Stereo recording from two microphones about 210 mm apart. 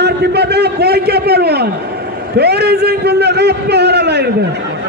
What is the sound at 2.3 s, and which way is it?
A man's voice, 50° right (ahead or behind).